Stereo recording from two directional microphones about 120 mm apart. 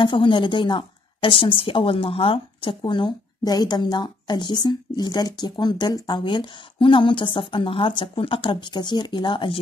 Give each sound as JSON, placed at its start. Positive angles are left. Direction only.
{"t": 0.0, "sound": "a woman's voice", "side_deg": 45}